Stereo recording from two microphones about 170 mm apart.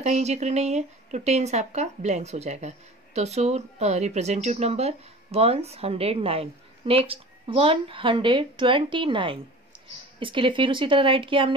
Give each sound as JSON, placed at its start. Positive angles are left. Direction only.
{"t": 0.0, "sound": "speech", "side_deg": -40}